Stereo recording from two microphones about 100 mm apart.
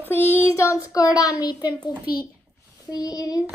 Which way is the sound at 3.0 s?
35° left (ahead or behind).